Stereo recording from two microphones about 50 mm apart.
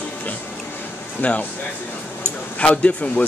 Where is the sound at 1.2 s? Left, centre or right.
Left.